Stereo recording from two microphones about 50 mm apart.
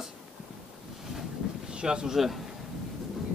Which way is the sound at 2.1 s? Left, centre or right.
Centre.